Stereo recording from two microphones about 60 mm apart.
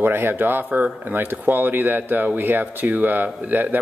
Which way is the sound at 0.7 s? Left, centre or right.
Right.